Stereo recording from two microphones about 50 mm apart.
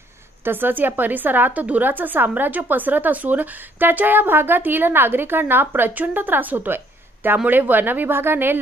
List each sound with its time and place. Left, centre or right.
0.4 s a woman's voice: right